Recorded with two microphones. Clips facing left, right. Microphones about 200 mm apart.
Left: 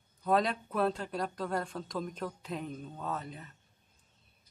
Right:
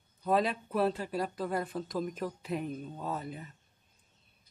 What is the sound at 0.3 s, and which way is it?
Speech, centre (ahead or behind).